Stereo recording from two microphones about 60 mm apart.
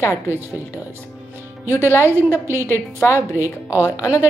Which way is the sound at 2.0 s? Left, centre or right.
Right.